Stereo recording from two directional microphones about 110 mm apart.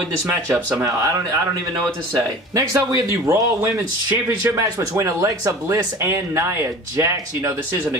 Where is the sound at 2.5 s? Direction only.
30° right (ahead or behind).